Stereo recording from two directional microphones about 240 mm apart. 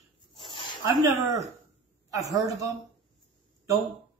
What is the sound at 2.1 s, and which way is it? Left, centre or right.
Speech, centre.